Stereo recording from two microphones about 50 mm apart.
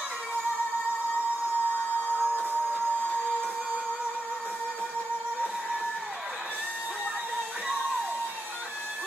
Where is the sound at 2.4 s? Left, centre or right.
Right.